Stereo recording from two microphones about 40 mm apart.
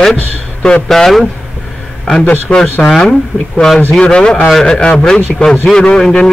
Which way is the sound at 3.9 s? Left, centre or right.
Left.